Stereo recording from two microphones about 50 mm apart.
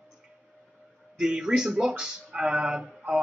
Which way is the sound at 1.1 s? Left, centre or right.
Centre.